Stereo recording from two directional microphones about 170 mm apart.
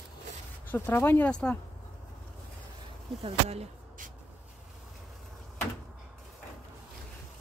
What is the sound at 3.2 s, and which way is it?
Speech, 35° right (ahead or behind).